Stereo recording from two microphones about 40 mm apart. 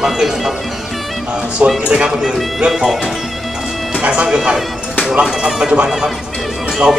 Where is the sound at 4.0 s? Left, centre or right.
Right.